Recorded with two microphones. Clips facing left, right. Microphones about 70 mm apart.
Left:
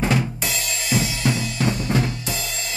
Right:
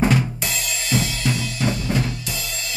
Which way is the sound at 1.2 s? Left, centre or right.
Left.